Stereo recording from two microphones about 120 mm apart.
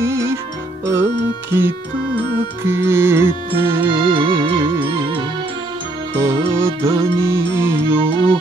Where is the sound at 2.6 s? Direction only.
20° right (ahead or behind).